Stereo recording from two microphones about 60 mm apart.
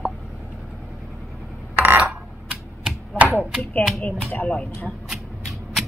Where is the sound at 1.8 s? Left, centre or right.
Right.